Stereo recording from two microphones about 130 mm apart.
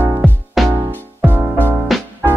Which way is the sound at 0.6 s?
Centre (ahead or behind).